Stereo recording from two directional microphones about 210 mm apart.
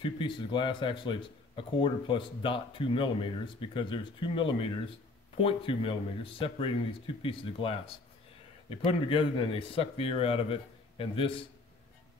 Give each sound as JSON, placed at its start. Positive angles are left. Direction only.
{"t": 0.0, "sound": "speech", "side_deg": 25}